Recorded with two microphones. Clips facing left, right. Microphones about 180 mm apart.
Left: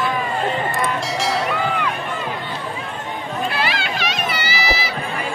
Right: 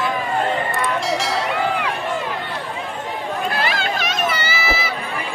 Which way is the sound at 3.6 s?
45° right (ahead or behind).